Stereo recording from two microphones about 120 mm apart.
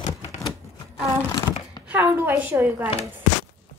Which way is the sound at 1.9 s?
20° right (ahead or behind).